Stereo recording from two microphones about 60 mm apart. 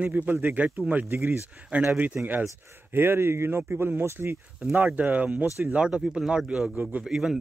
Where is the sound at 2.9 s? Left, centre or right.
Right.